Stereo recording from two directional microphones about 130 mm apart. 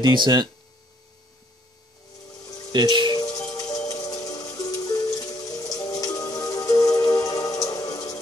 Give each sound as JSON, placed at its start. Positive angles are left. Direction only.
{"t": 0.0, "sound": "speech", "side_deg": -35}
{"t": 2.7, "sound": "speech", "side_deg": -35}
{"t": 3.5, "sound": "music", "side_deg": 25}